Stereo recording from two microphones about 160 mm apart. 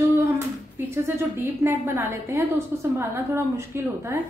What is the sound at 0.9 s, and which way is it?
A woman's voice, 15° right (ahead or behind).